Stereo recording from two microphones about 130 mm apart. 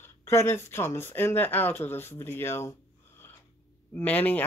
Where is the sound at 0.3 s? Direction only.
20° left (ahead or behind).